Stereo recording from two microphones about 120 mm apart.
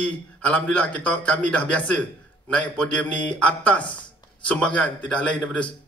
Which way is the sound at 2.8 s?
10° left (ahead or behind).